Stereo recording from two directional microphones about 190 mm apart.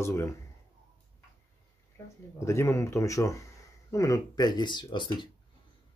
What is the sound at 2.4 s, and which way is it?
Speech, 15° left (ahead or behind).